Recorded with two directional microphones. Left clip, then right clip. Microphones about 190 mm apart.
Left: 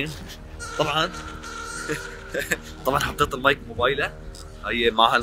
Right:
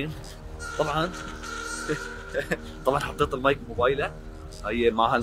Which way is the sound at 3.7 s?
15° left (ahead or behind).